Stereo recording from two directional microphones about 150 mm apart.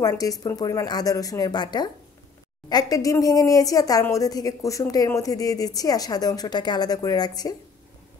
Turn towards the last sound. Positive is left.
turn(degrees=25)  # may be behind; listen again after turning